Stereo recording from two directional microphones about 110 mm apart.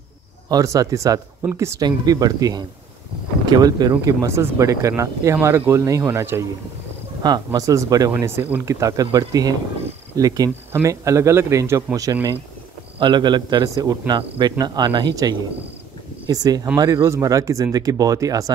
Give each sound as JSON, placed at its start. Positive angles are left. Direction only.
{"t": 0.5, "sound": "speech", "side_deg": -35}
{"t": 4.0, "sound": "speech", "side_deg": -25}
{"t": 7.2, "sound": "speech", "side_deg": -35}
{"t": 8.2, "sound": "speech", "side_deg": -20}